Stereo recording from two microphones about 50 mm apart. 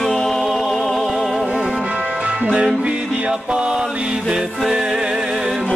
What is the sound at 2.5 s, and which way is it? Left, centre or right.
Music, right.